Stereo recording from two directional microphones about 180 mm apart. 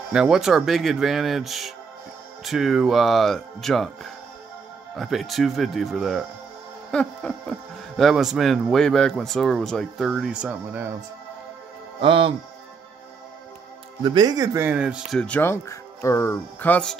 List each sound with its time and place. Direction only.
0.1 s speech: 5° right (ahead or behind)
6.9 s a sound: 5° left (ahead or behind)
8.0 s speech: centre (ahead or behind)
12.0 s speech: 30° right (ahead or behind)
14.0 s speech: 25° right (ahead or behind); by 16.9 s 10° left (ahead or behind)